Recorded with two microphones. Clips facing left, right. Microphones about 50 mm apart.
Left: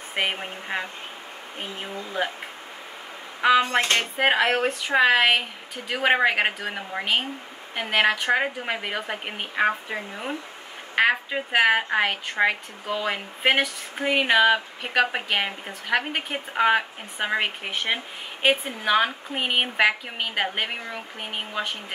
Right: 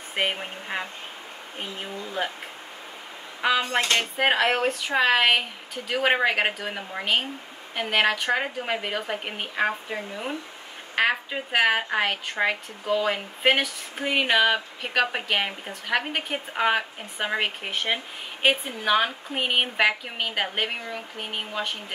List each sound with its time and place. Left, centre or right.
0.1 s a woman's voice: centre
3.6 s a sound: left
4.2 s a woman's voice: centre